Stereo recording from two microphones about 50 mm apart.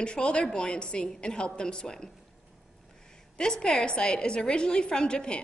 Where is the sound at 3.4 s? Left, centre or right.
Centre.